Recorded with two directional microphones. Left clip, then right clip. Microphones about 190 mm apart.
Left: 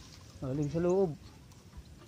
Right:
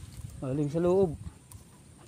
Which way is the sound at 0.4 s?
30° right (ahead or behind).